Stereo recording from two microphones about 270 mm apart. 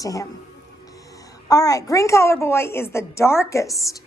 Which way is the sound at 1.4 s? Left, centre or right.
Centre.